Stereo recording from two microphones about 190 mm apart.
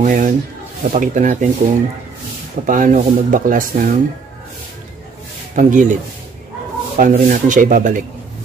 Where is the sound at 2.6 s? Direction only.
45° right (ahead or behind).